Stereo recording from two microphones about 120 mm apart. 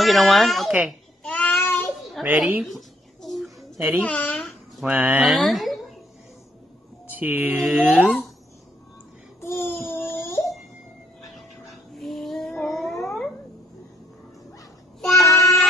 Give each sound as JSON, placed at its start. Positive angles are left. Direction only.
{"t": 0.0, "sound": "speech", "side_deg": 0}
{"t": 0.7, "sound": "babbling", "side_deg": 0}
{"t": 1.3, "sound": "child singing", "side_deg": 10}
{"t": 2.2, "sound": "speech", "side_deg": -15}
{"t": 2.6, "sound": "a sound", "side_deg": 0}
{"t": 4.0, "sound": "a child's voice", "side_deg": 10}
{"t": 4.8, "sound": "speech", "side_deg": -10}
{"t": 7.1, "sound": "speech", "side_deg": -15}
{"t": 9.4, "sound": "child singing", "side_deg": 20}
{"t": 11.2, "sound": "a sound", "side_deg": 0}
{"t": 15.0, "sound": "child singing", "side_deg": 0}